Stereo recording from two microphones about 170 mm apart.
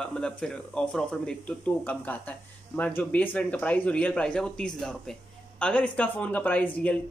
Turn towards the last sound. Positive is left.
turn(degrees=10)  # may be behind; listen again after turning